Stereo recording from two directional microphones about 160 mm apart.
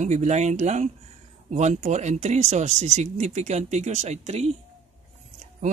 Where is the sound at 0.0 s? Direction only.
45° right (ahead or behind).